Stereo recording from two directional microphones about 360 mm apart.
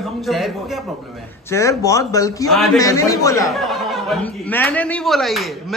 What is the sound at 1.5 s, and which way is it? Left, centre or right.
A man's voice, centre.